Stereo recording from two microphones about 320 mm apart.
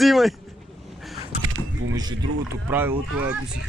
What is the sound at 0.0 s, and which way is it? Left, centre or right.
Speech, centre.